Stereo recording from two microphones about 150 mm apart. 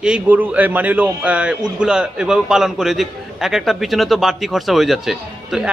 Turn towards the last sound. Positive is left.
turn(degrees=-5)  # may be behind; listen again after turning